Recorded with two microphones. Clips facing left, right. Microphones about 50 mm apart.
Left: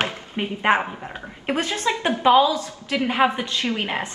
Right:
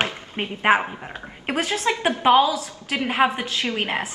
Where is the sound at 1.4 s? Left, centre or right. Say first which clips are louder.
Even; centre.